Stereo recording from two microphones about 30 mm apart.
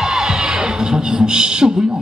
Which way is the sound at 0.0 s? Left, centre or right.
Right.